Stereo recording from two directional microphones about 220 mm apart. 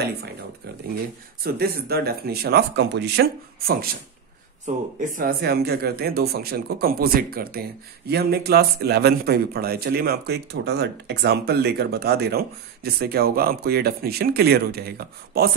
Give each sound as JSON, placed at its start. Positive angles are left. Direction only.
{"t": 1.4, "sound": "a man's voice", "side_deg": -45}